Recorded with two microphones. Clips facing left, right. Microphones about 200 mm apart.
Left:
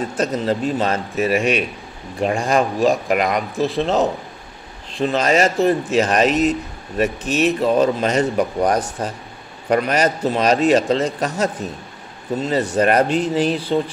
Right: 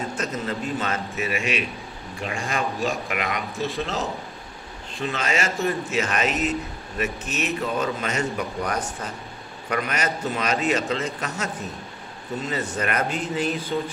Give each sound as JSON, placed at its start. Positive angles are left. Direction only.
{"t": 0.2, "sound": "a man's voice", "side_deg": 35}
{"t": 4.9, "sound": "a man's voice", "side_deg": 35}